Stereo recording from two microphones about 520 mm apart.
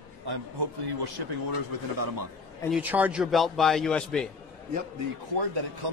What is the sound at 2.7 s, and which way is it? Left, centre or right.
A man's voice, centre.